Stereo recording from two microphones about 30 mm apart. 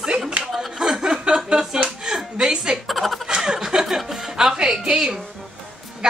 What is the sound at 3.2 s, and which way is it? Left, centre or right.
Chuckle, right.